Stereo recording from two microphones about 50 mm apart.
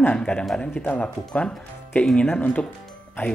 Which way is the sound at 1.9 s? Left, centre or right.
Left.